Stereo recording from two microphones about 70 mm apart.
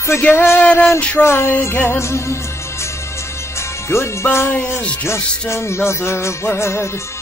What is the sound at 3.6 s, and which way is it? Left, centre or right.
Speech, left.